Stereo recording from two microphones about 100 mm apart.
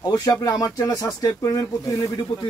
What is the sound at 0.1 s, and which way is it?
Speech, 40° left (ahead or behind).